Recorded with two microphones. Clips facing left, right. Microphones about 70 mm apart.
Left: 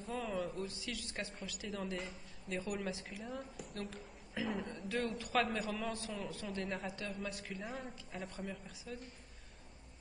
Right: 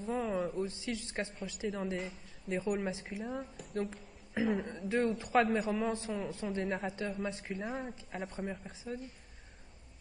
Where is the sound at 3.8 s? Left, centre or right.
Right.